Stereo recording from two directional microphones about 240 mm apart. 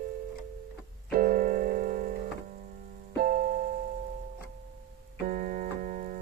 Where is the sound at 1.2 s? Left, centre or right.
Right.